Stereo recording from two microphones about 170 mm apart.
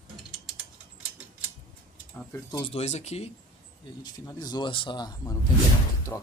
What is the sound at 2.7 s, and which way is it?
Speech, 40° left (ahead or behind).